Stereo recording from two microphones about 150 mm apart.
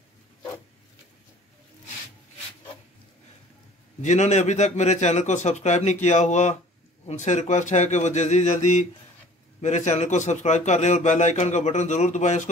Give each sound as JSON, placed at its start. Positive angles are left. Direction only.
{"t": 4.0, "sound": "a man's voice", "side_deg": 50}